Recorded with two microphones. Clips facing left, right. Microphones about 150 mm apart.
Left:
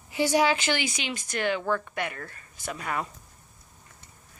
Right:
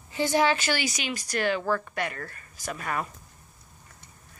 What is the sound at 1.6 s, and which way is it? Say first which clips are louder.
Speech: even; 5° right (ahead or behind).